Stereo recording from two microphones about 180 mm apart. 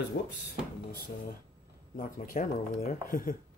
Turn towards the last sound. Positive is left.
turn(degrees=50)  # may be behind; listen again after turning